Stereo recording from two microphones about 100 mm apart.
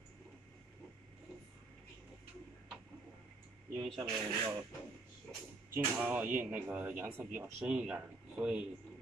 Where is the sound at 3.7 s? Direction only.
Centre (ahead or behind).